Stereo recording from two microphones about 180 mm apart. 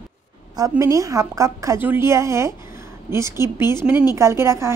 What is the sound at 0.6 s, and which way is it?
A woman's voice, 20° right (ahead or behind).